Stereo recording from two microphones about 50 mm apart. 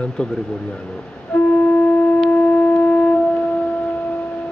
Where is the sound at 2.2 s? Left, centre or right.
Centre.